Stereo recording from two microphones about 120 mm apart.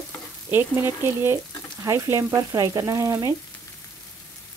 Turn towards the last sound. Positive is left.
turn(degrees=-25)  # may be behind; listen again after turning